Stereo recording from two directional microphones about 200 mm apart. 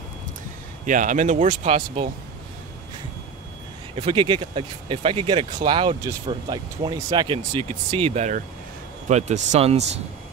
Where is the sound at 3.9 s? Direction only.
25° right (ahead or behind).